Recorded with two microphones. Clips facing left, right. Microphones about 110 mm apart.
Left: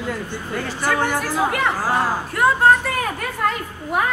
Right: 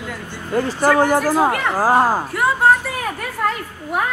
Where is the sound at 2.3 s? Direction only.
5° right (ahead or behind).